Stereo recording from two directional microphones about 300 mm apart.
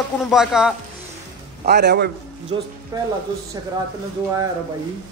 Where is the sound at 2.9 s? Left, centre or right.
Centre.